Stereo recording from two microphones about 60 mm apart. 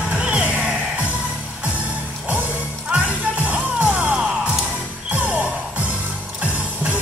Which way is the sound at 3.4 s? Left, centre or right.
Right.